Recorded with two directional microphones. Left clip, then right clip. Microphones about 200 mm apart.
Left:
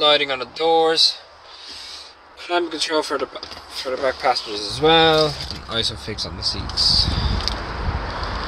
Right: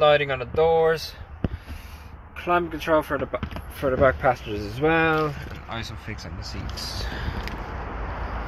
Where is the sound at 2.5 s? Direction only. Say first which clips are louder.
Left 1 dB; 15° left (ahead or behind).